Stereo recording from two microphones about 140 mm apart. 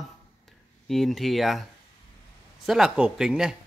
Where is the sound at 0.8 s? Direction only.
Centre (ahead or behind).